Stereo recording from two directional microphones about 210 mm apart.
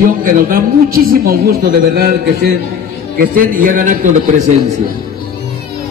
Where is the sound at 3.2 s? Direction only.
40° right (ahead or behind).